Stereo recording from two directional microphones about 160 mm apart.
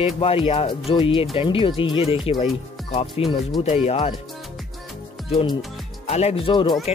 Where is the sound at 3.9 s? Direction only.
35° left (ahead or behind).